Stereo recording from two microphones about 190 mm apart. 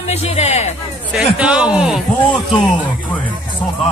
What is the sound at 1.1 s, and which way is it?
Speech, 5° right (ahead or behind).